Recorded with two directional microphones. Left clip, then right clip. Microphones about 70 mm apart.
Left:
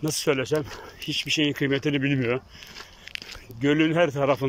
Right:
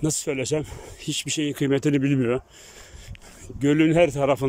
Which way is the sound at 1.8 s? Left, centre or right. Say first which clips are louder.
Right 2 dB; right.